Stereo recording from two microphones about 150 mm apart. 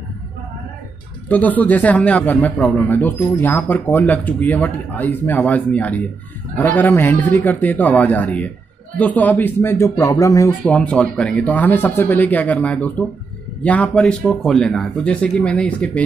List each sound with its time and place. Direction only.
1.3 s a man's voice: 10° left (ahead or behind)
10.6 s a man's voice: 10° left (ahead or behind)